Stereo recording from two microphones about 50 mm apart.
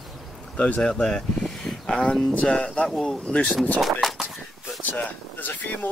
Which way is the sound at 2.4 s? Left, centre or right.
Left.